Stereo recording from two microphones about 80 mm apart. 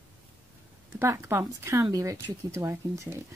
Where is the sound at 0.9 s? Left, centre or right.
Right.